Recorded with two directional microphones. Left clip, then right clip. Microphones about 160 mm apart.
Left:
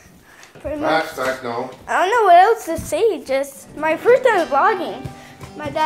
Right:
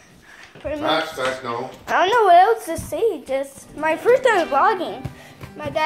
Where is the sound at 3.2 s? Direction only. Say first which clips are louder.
Left 3 dB; 5° left (ahead or behind).